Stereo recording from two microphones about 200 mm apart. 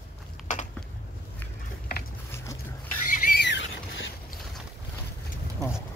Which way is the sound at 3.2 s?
55° left (ahead or behind).